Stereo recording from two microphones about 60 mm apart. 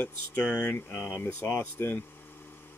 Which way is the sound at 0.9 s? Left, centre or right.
Left.